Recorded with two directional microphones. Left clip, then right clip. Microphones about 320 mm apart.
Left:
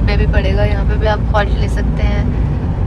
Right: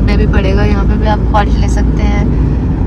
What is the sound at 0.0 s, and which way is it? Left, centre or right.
Vehicle, centre.